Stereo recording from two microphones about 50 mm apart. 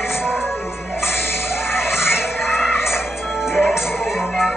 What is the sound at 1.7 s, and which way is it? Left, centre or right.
Music, left.